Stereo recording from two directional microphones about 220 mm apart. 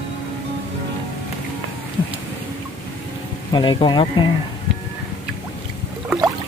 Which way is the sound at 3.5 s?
20° left (ahead or behind).